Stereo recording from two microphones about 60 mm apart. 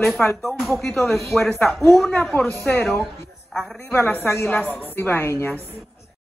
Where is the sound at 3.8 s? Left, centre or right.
Left.